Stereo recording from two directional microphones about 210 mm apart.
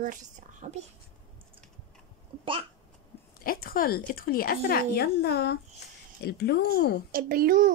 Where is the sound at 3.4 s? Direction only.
45° left (ahead or behind).